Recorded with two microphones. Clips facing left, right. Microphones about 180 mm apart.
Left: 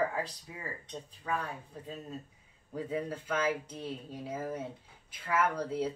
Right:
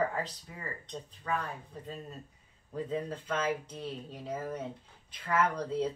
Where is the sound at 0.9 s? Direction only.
10° left (ahead or behind).